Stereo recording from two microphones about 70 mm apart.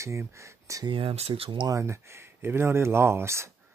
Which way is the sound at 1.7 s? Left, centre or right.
Right.